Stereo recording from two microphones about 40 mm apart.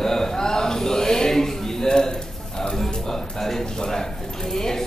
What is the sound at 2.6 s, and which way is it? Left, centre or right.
Music, centre.